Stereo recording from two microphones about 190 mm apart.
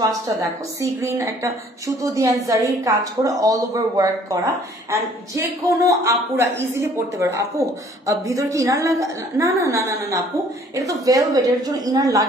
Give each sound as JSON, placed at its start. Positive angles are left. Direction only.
{"t": 1.0, "sound": "a woman's voice", "side_deg": -15}